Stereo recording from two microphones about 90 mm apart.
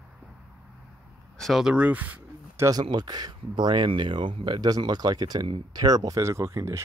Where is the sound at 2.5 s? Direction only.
40° right (ahead or behind).